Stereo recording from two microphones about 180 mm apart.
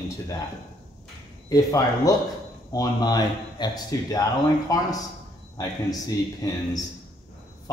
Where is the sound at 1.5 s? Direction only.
20° left (ahead or behind).